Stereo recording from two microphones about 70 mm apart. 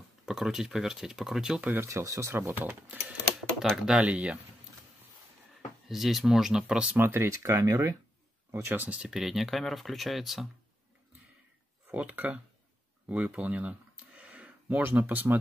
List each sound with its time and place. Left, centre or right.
0.2 s speech: centre
1.7 s speech: right
3.7 s speech: centre
5.9 s speech: centre
7.0 s speech: right
7.6 s speech: right
8.5 s speech: right
8.7 s speech: right
9.0 s speech: centre
11.9 s speech: centre
14.2 s a sound: right